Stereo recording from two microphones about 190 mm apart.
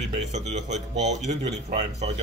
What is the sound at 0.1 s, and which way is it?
Speech, 40° right (ahead or behind).